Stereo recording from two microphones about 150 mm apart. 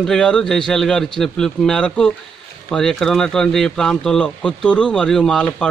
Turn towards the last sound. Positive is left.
turn(degrees=5)  # may be behind; listen again after turning